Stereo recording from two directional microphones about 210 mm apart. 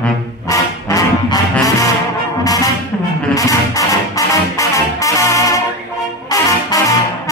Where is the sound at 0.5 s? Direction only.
15° left (ahead or behind).